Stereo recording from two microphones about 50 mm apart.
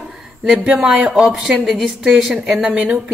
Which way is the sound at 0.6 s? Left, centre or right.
Centre.